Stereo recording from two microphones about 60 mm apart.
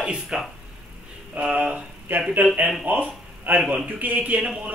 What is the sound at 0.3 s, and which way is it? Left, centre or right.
A man's voice, centre.